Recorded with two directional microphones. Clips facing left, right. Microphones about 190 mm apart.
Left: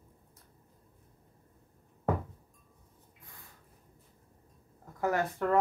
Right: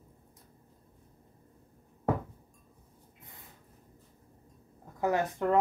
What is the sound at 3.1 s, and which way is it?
Snort, 20° right (ahead or behind).